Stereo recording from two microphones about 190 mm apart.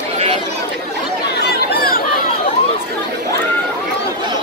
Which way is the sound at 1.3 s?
60° left (ahead or behind).